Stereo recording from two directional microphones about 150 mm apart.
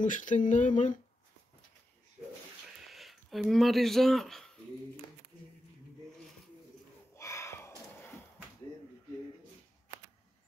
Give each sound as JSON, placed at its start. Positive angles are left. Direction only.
{"t": 0.0, "sound": "speech", "side_deg": 60}
{"t": 2.9, "sound": "speech", "side_deg": 0}
{"t": 7.2, "sound": "a sound", "side_deg": 20}